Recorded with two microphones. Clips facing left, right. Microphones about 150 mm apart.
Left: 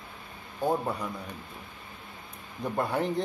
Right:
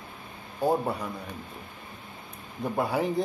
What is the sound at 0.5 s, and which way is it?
Speech, 10° right (ahead or behind).